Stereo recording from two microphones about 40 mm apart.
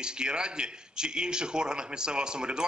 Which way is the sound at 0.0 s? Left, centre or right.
Right.